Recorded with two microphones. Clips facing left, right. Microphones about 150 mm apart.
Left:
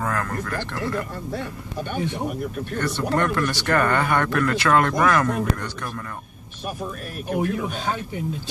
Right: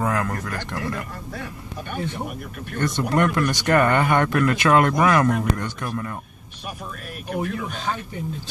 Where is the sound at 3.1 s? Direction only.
15° right (ahead or behind).